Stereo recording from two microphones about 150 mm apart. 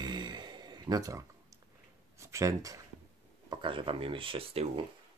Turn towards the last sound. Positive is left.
turn(degrees=-35)  # may be behind; listen again after turning